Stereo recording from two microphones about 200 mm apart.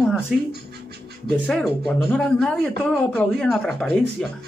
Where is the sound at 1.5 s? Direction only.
Centre (ahead or behind).